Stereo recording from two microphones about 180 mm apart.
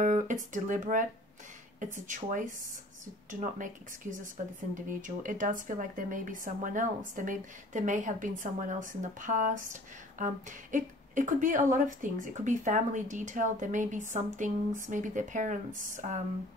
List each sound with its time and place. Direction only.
0.0 s speech: 45° right (ahead or behind)
4.7 s speech: 45° right (ahead or behind)